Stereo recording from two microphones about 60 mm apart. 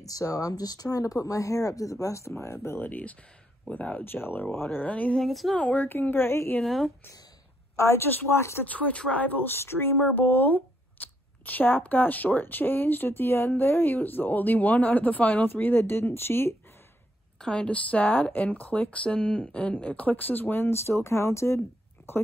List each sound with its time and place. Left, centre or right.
0.0 s speech: left
2.3 s speech: left
2.9 s speech: left
5.1 s speech: centre
5.6 s speech: left
6.6 s speech: centre
7.7 s a woman's voice: left
8.6 s speech: left
9.6 s speech: left
17.4 s speech: centre; by 22.2 s left